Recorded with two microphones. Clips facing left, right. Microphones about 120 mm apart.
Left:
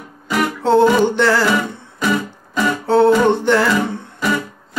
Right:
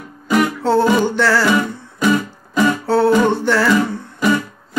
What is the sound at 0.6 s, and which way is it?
Music, 20° left (ahead or behind).